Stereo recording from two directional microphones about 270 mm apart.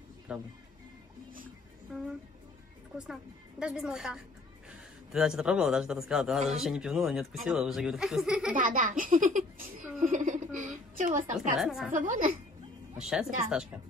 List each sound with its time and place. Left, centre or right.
0.3 s a man's voice: centre
3.0 s a man's voice: centre
8.5 s speech: right
11.3 s a man's voice: centre
11.9 s speech: right
12.9 s a man's voice: centre